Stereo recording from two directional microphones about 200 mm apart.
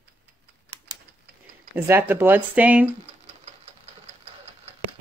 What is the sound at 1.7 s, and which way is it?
Speech, 10° right (ahead or behind).